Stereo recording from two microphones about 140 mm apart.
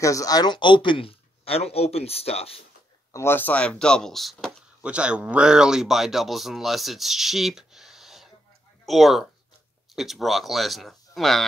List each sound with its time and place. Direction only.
0.0 s speech: 25° left (ahead or behind); by 2.6 s 45° left (ahead or behind)
3.1 s speech: 20° left (ahead or behind); by 11.4 s centre (ahead or behind)